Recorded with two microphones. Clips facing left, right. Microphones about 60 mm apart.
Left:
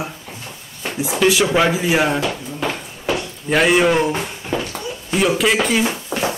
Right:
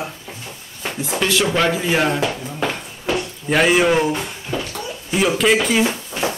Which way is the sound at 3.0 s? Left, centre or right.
Centre.